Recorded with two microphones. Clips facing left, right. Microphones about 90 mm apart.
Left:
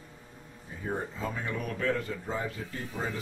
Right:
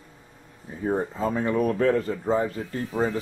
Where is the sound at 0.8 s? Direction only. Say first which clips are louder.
Right 9 dB; 35° right (ahead or behind).